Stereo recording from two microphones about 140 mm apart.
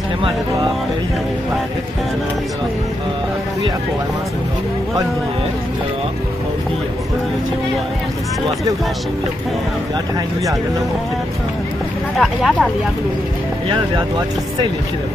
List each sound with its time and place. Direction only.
12.2 s speech: centre (ahead or behind)
13.7 s speech: 35° right (ahead or behind)